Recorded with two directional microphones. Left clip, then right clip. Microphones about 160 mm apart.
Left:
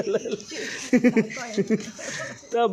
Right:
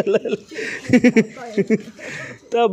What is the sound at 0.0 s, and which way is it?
Speech, 40° right (ahead or behind).